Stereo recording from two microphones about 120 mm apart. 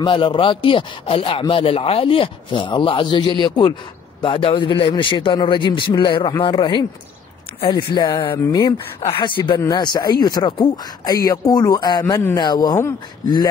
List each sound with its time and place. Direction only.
0.0 s a man's voice: 45° left (ahead or behind)
4.2 s a man's voice: 50° left (ahead or behind)
8.5 s speech: 25° left (ahead or behind)
12.0 s speech: 20° left (ahead or behind)
12.4 s speech: 35° left (ahead or behind)